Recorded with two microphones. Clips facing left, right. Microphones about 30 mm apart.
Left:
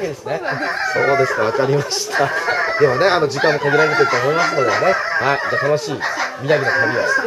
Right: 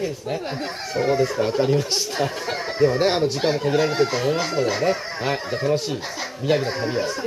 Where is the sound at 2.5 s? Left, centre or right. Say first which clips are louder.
Left 9 dB; left.